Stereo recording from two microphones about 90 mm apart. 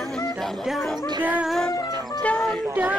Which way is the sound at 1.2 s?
20° right (ahead or behind).